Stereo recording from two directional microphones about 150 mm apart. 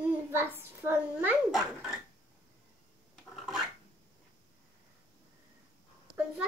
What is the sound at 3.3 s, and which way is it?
Filing, centre (ahead or behind).